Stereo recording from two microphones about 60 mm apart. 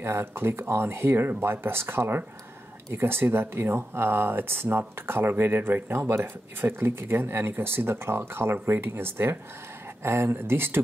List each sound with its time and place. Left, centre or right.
0.0 s speech: right